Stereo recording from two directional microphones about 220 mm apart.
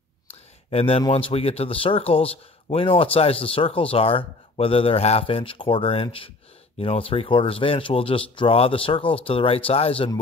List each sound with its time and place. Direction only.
0.3 s speech: 25° left (ahead or behind)